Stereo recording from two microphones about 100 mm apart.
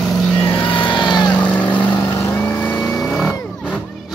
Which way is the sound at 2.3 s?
15° left (ahead or behind).